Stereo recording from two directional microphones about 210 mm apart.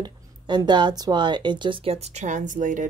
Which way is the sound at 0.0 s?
20° right (ahead or behind).